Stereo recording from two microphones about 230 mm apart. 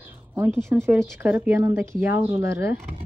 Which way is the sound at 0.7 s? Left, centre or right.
Centre.